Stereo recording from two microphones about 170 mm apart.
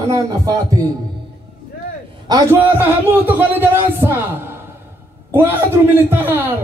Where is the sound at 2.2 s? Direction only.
20° right (ahead or behind).